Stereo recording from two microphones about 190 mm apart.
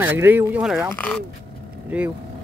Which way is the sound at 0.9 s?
5° left (ahead or behind).